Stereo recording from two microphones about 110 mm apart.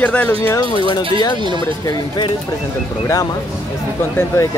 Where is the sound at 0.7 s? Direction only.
45° left (ahead or behind).